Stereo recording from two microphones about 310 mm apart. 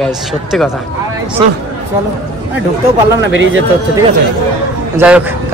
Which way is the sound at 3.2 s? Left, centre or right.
Right.